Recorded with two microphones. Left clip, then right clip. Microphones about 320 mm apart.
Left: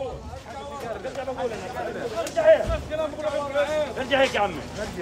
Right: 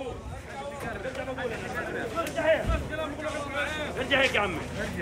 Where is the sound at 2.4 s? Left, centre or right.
Left.